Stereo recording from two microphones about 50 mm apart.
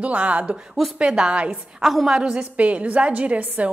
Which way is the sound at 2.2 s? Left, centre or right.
Centre.